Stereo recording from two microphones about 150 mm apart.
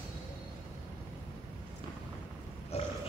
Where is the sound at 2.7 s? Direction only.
45° left (ahead or behind).